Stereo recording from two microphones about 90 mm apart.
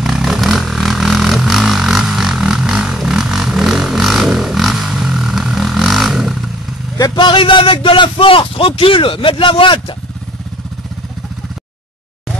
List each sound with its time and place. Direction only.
0.0 s vehicle: 5° right (ahead or behind)
7.0 s speech: 60° left (ahead or behind)